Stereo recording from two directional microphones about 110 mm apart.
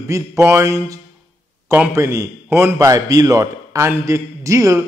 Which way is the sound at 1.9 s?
25° right (ahead or behind).